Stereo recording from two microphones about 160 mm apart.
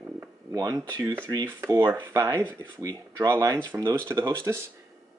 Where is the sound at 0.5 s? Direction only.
20° right (ahead or behind).